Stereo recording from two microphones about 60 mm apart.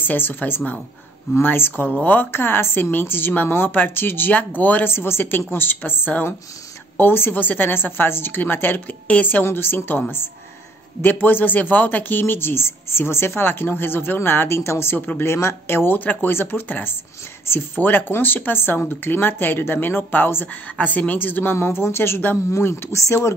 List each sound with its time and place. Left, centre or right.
0.0 s a man's voice: left
4.9 s a man's voice: left
11.0 s a man's voice: left
15.0 s a woman's voice: left
15.2 s a man's voice: left
21.5 s speech: left